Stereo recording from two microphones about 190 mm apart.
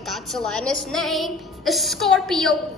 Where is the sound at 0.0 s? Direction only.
Centre (ahead or behind).